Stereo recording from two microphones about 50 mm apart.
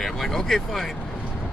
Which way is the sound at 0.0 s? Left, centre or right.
Centre.